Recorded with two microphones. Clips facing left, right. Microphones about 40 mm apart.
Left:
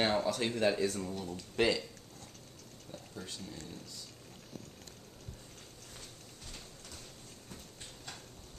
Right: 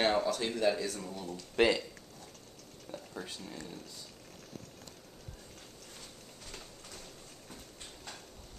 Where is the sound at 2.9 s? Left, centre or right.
Centre.